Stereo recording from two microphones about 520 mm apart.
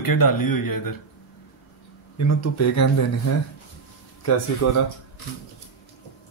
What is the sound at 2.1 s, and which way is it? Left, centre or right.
Speech, left.